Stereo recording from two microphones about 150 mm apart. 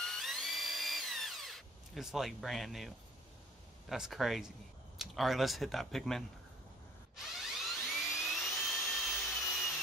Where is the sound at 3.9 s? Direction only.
Centre (ahead or behind).